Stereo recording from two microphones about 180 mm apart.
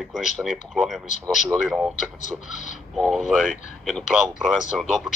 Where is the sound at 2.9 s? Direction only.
Centre (ahead or behind).